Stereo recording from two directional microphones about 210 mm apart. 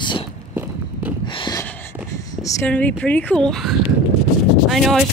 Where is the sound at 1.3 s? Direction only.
20° left (ahead or behind).